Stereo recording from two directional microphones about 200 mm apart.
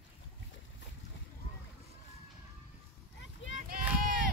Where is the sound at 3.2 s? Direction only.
70° left (ahead or behind).